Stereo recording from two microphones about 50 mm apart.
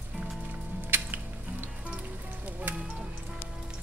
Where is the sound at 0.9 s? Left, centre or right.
Right.